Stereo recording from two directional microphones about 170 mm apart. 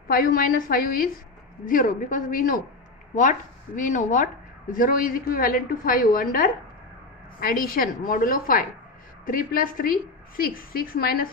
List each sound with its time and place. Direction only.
0.1 s a woman's voice: 60° left (ahead or behind)